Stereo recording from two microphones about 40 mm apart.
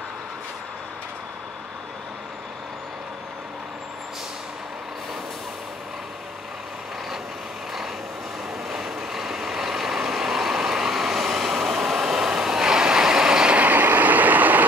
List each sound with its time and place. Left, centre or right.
8.6 s vehicle: centre
13.6 s vehicle: right